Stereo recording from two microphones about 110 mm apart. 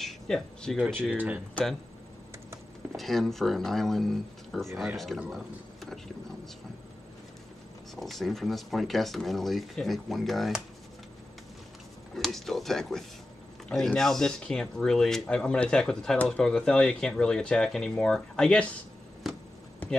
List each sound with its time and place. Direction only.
0.0 s a sound: 5° left (ahead or behind)
1.1 s speech: 15° right (ahead or behind)
1.5 s speech: 5° left (ahead or behind)
3.0 s speech: centre (ahead or behind)
7.9 s speech: centre (ahead or behind)
12.2 s speech: 5° left (ahead or behind)
19.2 s a sound: 5° right (ahead or behind)